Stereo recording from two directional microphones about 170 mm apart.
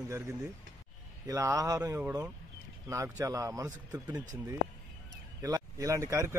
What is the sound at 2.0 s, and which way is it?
A man's voice, 10° right (ahead or behind).